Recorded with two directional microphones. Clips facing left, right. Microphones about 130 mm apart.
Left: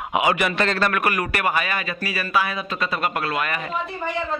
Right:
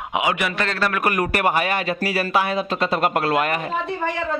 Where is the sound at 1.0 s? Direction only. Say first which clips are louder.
Right 2 dB; 45° right (ahead or behind).